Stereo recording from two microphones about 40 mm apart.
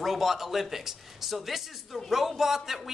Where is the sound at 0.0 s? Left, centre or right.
Centre.